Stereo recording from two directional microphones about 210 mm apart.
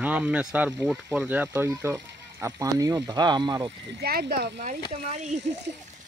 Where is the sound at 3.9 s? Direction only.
50° right (ahead or behind).